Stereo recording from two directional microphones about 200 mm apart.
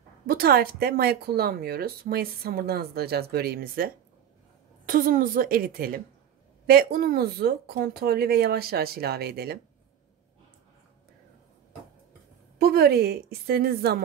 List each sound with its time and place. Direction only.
0.3 s speech: 50° right (ahead or behind)
12.5 s speech: 50° right (ahead or behind)